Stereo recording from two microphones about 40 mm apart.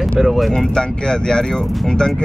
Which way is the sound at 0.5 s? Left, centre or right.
Centre.